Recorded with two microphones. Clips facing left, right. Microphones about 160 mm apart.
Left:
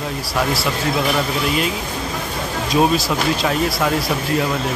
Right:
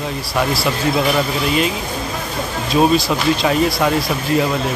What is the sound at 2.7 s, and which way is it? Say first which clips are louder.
Speech: right 2 dB; centre (ahead or behind).